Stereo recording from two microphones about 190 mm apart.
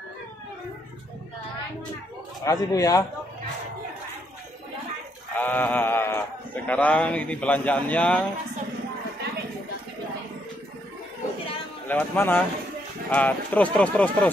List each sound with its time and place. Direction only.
2.4 s speech: 20° left (ahead or behind)
5.4 s speech: 10° left (ahead or behind)
11.9 s speech: 10° left (ahead or behind)